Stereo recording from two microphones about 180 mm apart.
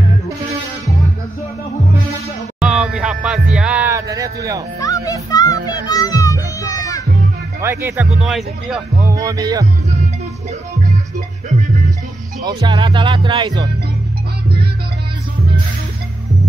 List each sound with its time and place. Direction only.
2.6 s music: 5° right (ahead or behind)
3.9 s a sound: 20° right (ahead or behind)
4.7 s music: 20° left (ahead or behind)
7.6 s speech: 15° right (ahead or behind)
9.0 s speech: 20° right (ahead or behind)
12.4 s speech: 25° right (ahead or behind)